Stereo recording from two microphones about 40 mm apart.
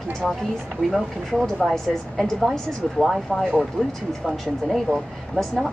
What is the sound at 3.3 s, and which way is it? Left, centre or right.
Speech, centre.